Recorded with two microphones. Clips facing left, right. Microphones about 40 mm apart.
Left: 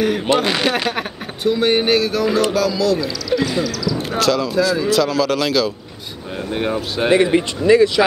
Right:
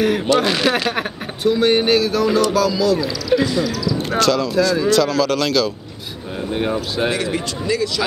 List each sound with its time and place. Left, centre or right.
0.4 s speech: centre
4.2 s speech: centre
7.1 s a man's voice: left